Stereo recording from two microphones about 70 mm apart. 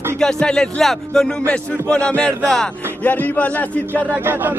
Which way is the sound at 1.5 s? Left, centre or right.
Centre.